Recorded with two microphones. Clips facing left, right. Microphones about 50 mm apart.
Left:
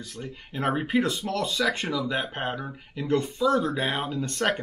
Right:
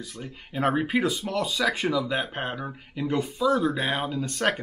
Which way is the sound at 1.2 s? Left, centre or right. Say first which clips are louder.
Even; centre.